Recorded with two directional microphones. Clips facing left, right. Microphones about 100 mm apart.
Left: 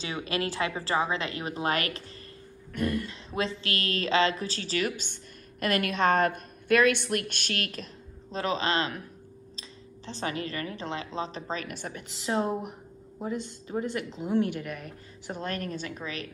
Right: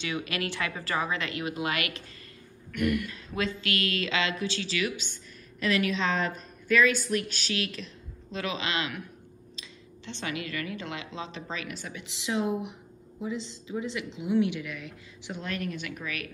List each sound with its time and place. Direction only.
0.0 s speech: 30° left (ahead or behind)
13.2 s a woman's voice: 50° left (ahead or behind); by 16.3 s 30° left (ahead or behind)